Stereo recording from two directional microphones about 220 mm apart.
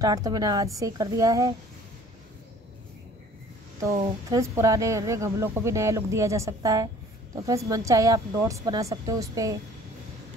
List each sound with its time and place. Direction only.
0.0 s speech: 15° right (ahead or behind)
3.9 s a woman's voice: 25° right (ahead or behind)
4.4 s speech: 15° right (ahead or behind)